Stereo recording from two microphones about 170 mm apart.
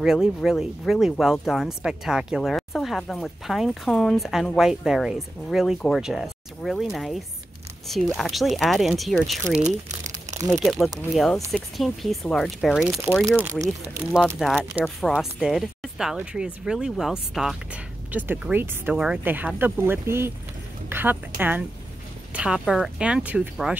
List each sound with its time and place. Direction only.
0.0 s speech: centre (ahead or behind)
8.2 s speech: centre (ahead or behind)
9.6 s crumpling: 45° right (ahead or behind)
10.5 s speech: centre (ahead or behind)
13.4 s speech: 15° right (ahead or behind)
14.2 s speech: centre (ahead or behind)